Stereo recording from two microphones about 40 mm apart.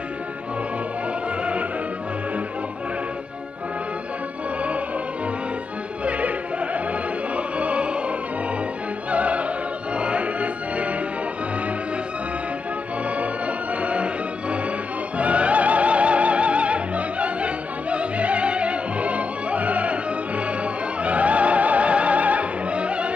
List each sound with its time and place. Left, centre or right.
1.4 s opera: right
6.0 s opera: right
9.1 s opera: right
9.9 s music: right
13.7 s music: right
15.1 s opera: right